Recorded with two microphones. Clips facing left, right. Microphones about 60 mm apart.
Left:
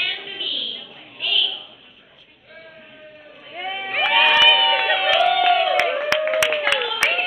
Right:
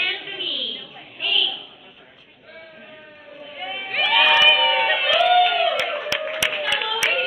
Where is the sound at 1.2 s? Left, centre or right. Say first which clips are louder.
Even; centre.